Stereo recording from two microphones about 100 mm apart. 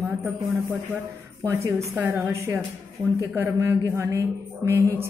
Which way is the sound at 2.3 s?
25° right (ahead or behind).